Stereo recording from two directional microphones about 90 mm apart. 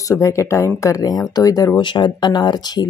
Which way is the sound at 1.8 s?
60° left (ahead or behind).